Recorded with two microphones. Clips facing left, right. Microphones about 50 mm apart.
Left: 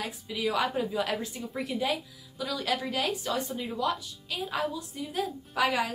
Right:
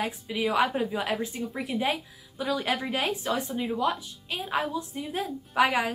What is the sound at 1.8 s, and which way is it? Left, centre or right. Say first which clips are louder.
Speech: right 3 dB; right.